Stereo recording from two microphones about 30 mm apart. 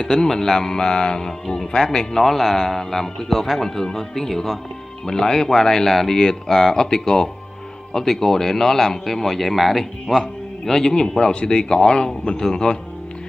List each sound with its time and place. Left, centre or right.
0.0 s a man's voice: centre
10.6 s a man's voice: centre